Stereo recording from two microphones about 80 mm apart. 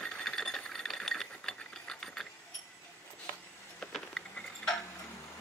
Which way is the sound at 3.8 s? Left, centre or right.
Centre.